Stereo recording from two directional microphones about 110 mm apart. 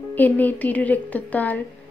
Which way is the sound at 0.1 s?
15° left (ahead or behind).